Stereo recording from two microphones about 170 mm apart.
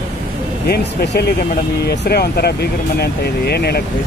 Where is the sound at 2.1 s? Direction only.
70° left (ahead or behind).